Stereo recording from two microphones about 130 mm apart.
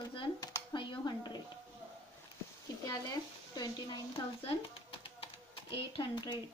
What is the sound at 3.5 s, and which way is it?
Speech, 30° left (ahead or behind).